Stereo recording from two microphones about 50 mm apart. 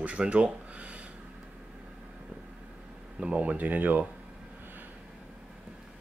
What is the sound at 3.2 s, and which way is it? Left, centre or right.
Speech, right.